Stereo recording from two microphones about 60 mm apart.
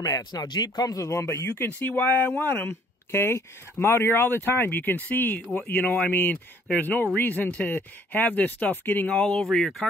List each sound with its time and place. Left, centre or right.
0.3 s speech: left
1.1 s speech: left
1.5 s speech: left
9.1 s speech: centre